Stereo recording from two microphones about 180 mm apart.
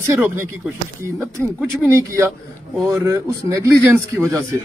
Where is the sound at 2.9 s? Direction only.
15° right (ahead or behind).